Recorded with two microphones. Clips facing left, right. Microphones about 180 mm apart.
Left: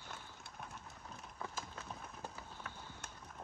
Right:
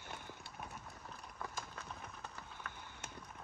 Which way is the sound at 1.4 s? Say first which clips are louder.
Left 1 dB; centre (ahead or behind).